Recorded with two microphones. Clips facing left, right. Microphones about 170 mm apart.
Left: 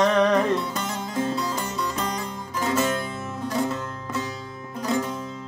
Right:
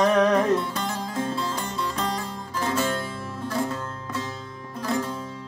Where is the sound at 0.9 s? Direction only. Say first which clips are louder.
Left 2 dB; 20° left (ahead or behind).